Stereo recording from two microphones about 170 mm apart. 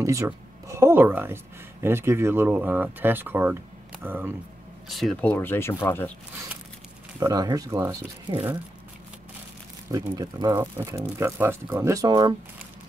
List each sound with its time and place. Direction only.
0.0 s speech: 20° right (ahead or behind)
4.8 s speech: centre (ahead or behind)
7.2 s speech: 25° right (ahead or behind)
9.8 s speech: 20° right (ahead or behind)